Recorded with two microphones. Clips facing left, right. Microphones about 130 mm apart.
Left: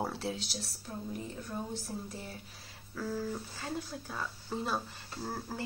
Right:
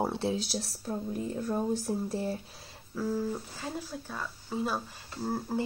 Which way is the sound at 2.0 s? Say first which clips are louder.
Right 11 dB; 30° right (ahead or behind).